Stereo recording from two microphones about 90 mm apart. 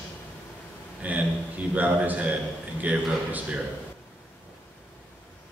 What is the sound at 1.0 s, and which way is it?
A man's voice, 15° right (ahead or behind).